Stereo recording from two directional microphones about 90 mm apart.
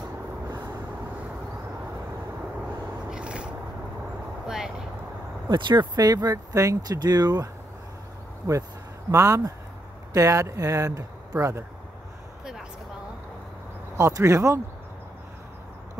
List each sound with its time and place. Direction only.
3.1 s a sound: 10° right (ahead or behind)
4.5 s vehicle: 5° right (ahead or behind)
5.5 s speech: 60° right (ahead or behind)
8.5 s speech: 35° right (ahead or behind)
13.9 s speech: 35° right (ahead or behind)